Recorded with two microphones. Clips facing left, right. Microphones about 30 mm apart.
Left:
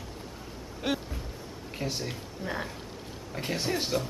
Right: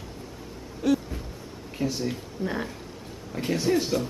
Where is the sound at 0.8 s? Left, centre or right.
Left.